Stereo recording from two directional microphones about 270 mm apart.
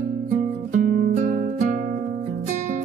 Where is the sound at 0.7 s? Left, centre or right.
Right.